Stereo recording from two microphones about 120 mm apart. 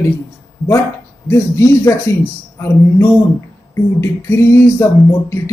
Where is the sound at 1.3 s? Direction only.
20° left (ahead or behind).